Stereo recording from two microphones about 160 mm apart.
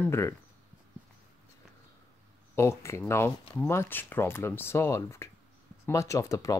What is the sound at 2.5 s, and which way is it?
Speech, 15° left (ahead or behind).